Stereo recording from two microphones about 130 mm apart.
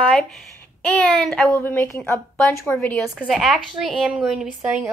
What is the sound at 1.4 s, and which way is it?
A woman's voice, 20° left (ahead or behind).